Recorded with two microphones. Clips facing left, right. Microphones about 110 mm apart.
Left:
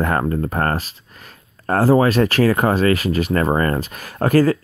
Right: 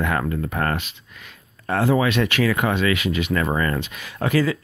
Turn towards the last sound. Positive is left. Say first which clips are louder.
# left 6 dB
turn(degrees=45)  # may be behind; listen again after turning